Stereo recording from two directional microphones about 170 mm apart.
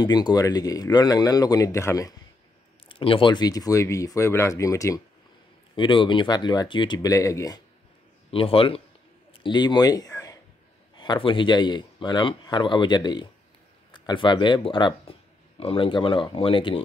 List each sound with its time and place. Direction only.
0.0 s speech: 25° left (ahead or behind)
2.9 s speech: 30° left (ahead or behind)
8.3 s speech: 35° left (ahead or behind)
9.3 s a sound: 30° left (ahead or behind)
11.0 s speech: 30° left (ahead or behind)